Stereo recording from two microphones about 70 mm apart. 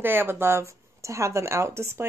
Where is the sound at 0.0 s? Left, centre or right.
Right.